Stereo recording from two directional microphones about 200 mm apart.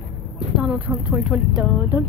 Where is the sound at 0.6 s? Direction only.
5° right (ahead or behind).